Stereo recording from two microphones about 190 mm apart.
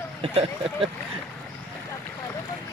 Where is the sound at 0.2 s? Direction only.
30° right (ahead or behind).